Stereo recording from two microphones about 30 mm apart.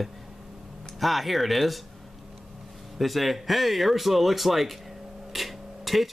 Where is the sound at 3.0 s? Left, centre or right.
Centre.